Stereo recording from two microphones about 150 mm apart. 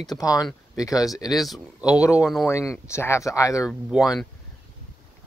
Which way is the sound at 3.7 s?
Centre (ahead or behind).